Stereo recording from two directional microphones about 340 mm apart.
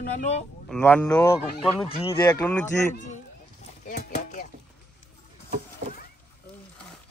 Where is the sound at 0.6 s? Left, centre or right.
Centre.